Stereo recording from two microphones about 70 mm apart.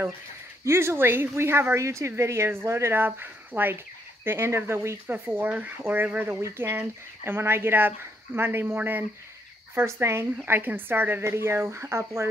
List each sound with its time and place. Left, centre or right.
0.7 s speech: right
10.4 s speech: right